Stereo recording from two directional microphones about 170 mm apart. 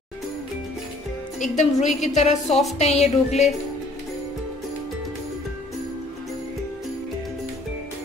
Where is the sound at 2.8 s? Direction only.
40° left (ahead or behind).